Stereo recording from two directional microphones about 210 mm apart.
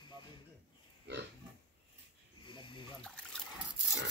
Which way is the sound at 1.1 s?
55° right (ahead or behind).